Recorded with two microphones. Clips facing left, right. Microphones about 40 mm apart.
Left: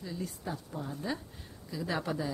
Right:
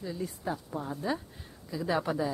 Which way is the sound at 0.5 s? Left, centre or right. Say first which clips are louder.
Right 4 dB; centre.